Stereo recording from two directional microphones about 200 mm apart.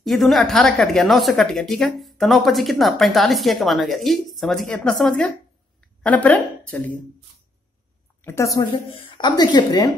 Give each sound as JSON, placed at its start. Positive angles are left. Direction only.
{"t": 0.0, "sound": "a woman's voice", "side_deg": 0}
{"t": 8.2, "sound": "a woman's voice", "side_deg": 10}
{"t": 8.9, "sound": "a woman's voice", "side_deg": 25}